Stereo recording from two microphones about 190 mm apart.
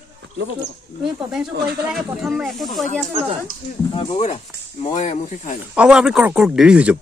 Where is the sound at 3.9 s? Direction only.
30° left (ahead or behind).